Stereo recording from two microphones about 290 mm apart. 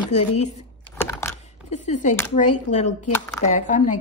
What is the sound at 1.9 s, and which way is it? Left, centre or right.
Speech, left.